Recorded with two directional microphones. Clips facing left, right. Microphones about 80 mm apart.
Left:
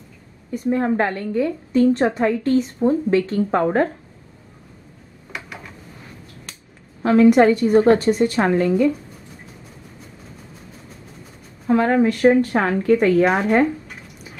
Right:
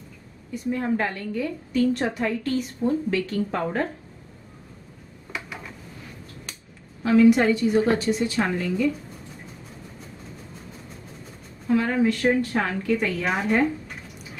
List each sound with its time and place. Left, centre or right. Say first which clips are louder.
0.5 s a woman's voice: left 5 dB; left
5.3 s a sound: left 1 dB; centre
7.0 s a woman's voice: left 4 dB; left
11.6 s a woman's voice: left 5 dB; left